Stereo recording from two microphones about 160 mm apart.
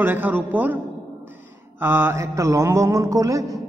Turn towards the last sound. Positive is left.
turn(degrees=-20)  # may be behind; listen again after turning